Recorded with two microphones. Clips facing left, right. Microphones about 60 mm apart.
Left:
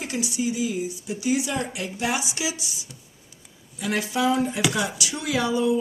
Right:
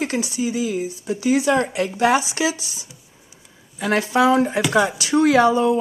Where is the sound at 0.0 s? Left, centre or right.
Right.